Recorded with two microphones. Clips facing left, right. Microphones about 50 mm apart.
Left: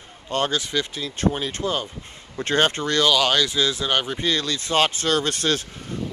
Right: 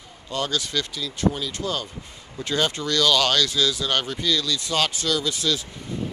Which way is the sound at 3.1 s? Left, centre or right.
Centre.